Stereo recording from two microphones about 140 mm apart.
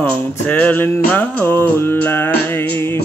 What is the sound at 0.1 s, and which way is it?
Music, 10° left (ahead or behind).